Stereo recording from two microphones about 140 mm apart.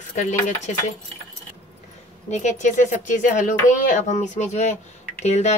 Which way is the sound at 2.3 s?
55° left (ahead or behind).